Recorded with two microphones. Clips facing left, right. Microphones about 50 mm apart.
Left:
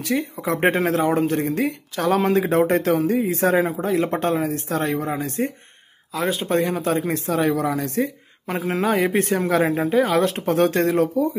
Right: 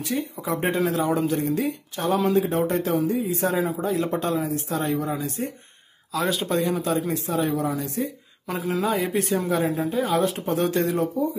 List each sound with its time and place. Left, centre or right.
0.0 s speech: left
1.7 s speech: left
6.1 s speech: left
6.5 s speech: left
7.1 s speech: left
8.5 s speech: left
9.5 s speech: left